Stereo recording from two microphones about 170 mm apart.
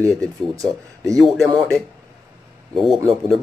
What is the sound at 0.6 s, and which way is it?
Speech, 20° right (ahead or behind).